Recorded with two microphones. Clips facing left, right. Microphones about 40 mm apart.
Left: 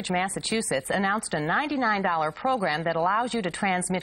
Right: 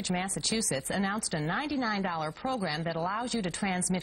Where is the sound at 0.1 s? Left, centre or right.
Left.